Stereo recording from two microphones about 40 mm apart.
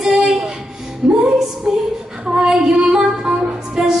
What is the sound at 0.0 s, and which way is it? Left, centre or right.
Music, centre.